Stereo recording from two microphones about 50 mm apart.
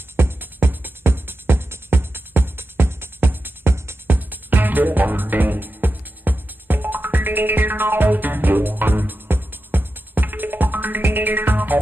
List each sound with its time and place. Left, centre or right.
0.2 s music: right